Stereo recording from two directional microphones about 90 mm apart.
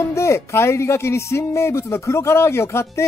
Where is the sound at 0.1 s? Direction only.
30° left (ahead or behind).